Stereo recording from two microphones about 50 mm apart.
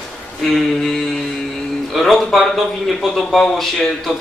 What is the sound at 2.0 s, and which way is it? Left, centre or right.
Speech, centre.